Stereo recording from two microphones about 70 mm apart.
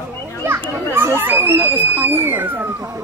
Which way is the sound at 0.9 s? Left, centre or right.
Right.